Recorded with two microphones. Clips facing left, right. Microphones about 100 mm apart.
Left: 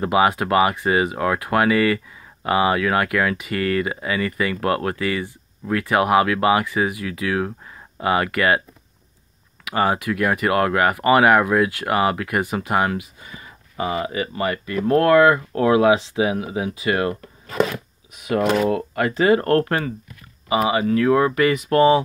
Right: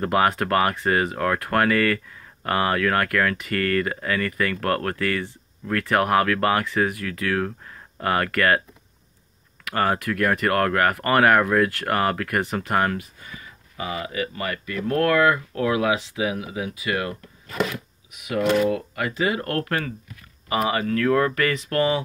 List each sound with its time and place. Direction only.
0.0 s speech: 10° left (ahead or behind)
9.7 s speech: 10° left (ahead or behind)
13.4 s speech: 30° left (ahead or behind)
18.1 s speech: 35° left (ahead or behind)
20.4 s speech: 10° left (ahead or behind)